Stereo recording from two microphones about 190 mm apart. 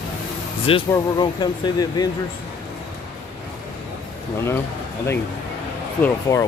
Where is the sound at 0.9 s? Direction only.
20° left (ahead or behind).